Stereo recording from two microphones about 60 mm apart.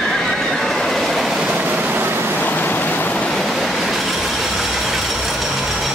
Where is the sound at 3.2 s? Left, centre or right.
Centre.